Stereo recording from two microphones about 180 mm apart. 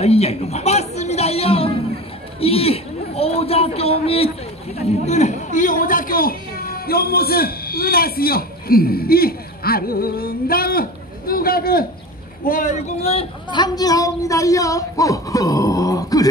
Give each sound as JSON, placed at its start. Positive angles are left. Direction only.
{"t": 0.0, "sound": "a sound", "side_deg": 35}
{"t": 2.4, "sound": "a man's voice", "side_deg": 30}
{"t": 12.4, "sound": "a woman's voice", "side_deg": 45}